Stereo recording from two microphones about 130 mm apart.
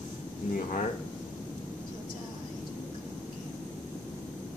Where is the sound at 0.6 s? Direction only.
70° left (ahead or behind).